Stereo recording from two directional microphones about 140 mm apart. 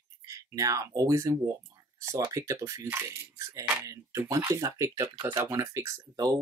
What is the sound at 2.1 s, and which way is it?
Speech, 20° right (ahead or behind).